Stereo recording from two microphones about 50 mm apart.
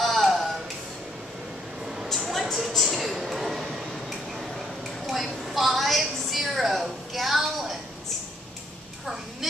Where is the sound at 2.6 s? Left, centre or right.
Centre.